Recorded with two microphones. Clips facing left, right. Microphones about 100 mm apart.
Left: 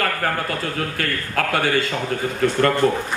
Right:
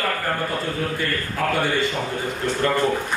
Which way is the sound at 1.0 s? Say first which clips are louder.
Left 1 dB; 80° left.